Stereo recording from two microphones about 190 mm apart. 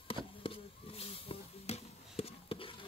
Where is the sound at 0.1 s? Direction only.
30° left (ahead or behind).